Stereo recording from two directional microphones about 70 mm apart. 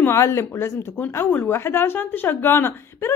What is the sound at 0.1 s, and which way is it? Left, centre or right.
Speech, left.